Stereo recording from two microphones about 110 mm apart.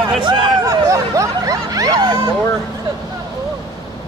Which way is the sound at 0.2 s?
40° right (ahead or behind).